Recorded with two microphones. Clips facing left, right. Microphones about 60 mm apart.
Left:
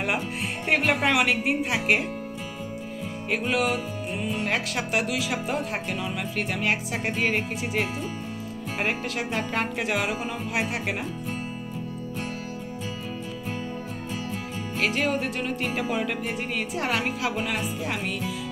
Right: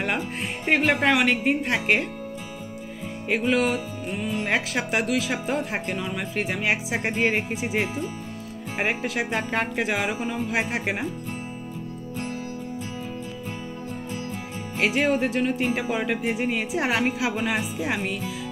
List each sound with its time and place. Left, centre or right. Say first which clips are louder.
0.0 s a woman's voice: even; centre
3.3 s a woman's voice: right 3 dB; centre
14.8 s speech: right 3 dB; centre